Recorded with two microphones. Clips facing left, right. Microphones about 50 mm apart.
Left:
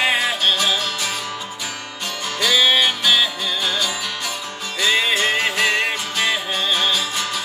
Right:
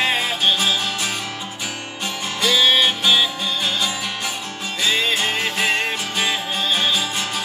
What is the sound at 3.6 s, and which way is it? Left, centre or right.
Music, centre.